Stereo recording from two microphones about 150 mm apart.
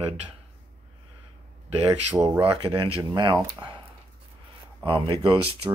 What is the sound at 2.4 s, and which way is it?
Speech, 35° right (ahead or behind).